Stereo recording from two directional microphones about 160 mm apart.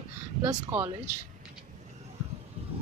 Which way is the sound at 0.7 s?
15° right (ahead or behind).